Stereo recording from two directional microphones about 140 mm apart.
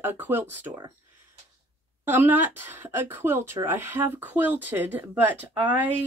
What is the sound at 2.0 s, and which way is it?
Speech, 15° right (ahead or behind).